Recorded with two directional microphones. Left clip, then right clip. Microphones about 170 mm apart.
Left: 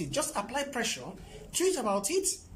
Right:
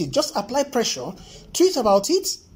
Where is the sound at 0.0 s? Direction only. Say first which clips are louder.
Right 10 dB; 20° right (ahead or behind).